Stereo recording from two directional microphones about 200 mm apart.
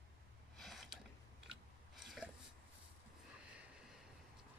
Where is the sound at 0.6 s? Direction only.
Centre (ahead or behind).